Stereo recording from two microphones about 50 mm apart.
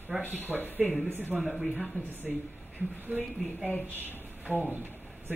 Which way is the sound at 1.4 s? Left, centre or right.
Centre.